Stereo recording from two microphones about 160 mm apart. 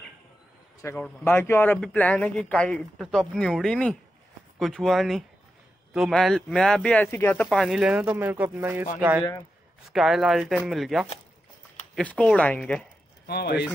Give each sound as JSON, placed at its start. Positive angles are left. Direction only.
{"t": 0.8, "sound": "speech", "side_deg": 10}
{"t": 7.4, "sound": "speech", "side_deg": 0}
{"t": 9.8, "sound": "speech", "side_deg": 0}
{"t": 13.3, "sound": "speech", "side_deg": 85}